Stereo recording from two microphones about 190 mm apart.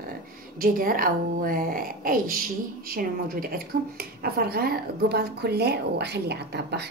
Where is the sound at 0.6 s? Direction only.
50° right (ahead or behind).